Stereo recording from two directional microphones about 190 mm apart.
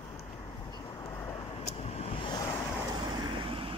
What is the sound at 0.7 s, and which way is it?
Vehicle, 20° left (ahead or behind).